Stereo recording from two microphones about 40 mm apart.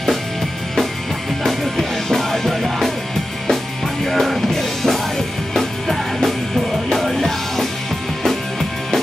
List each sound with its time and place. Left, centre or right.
1.4 s music: centre
4.0 s music: centre